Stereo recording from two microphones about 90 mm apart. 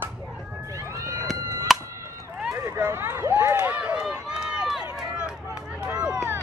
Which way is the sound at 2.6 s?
30° right (ahead or behind).